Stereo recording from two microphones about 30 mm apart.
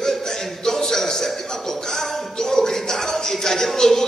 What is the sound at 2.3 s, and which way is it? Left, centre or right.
A man's voice, centre.